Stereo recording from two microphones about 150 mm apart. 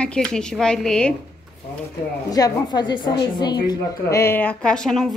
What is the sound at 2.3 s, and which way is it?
A woman's voice, 25° left (ahead or behind).